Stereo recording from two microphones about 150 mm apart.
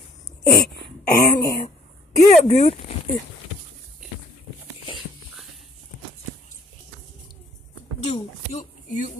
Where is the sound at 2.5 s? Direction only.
45° left (ahead or behind).